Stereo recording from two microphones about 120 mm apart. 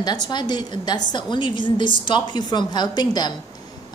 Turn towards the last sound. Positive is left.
turn(degrees=35)  # may be behind; listen again after turning